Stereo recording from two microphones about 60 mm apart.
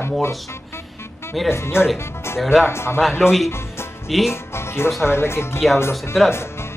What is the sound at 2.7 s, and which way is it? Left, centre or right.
Speech, left.